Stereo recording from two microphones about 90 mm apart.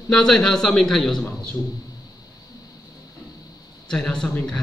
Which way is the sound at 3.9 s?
10° left (ahead or behind).